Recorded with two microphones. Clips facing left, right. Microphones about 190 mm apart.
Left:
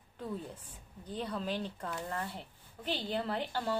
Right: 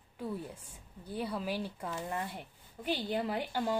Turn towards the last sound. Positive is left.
turn(degrees=-15)  # may be behind; listen again after turning